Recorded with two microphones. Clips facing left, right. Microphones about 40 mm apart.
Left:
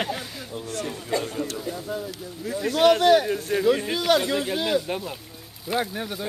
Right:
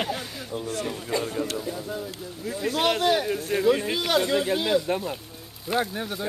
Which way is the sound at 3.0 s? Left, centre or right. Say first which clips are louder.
Left 5 dB; left.